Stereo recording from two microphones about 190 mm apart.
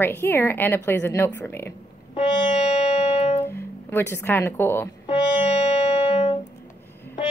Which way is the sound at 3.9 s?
10° left (ahead or behind).